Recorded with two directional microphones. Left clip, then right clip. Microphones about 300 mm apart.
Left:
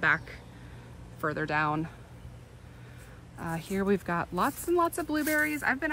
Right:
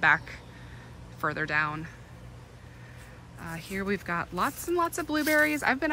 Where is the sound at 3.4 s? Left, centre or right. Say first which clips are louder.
Left 3 dB; centre.